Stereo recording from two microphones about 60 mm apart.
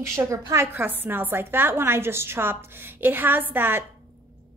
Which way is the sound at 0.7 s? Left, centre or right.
Right.